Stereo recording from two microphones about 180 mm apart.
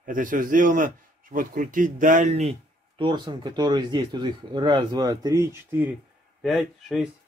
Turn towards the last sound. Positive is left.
turn(degrees=0)  # may be behind; listen again after turning